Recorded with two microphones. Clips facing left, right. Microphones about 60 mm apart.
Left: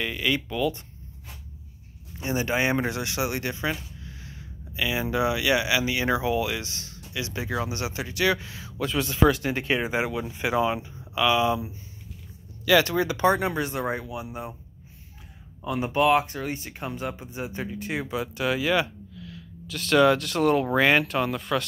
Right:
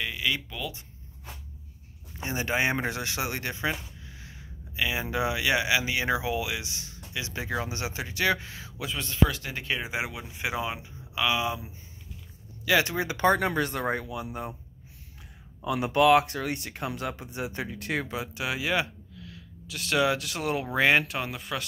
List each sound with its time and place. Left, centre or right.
0.0 s speech: centre
2.1 s speech: right
8.9 s speech: centre
9.8 s speech: centre
12.6 s speech: right
13.2 s speech: right
15.6 s speech: right
18.4 s speech: right
19.1 s a sound: right
19.9 s speech: centre
20.2 s speech: left
20.7 s speech: right